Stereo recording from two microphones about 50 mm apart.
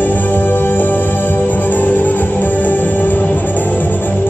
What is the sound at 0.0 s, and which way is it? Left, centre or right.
Music, left.